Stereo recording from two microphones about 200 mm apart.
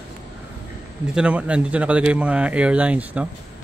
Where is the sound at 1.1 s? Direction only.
5° right (ahead or behind).